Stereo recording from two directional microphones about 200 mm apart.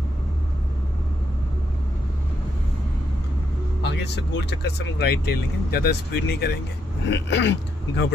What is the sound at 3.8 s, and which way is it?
Speech, 60° left (ahead or behind).